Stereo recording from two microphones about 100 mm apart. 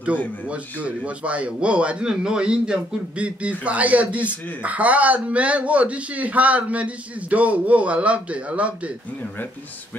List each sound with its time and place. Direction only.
0.5 s speech: 15° right (ahead or behind)